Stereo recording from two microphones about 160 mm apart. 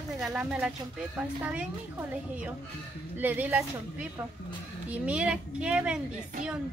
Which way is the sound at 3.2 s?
10° right (ahead or behind).